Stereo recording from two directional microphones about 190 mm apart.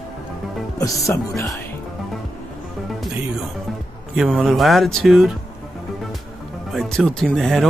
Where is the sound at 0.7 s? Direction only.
15° left (ahead or behind).